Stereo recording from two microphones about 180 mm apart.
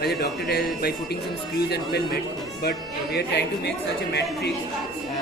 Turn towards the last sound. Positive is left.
turn(degrees=70)  # may be behind; listen again after turning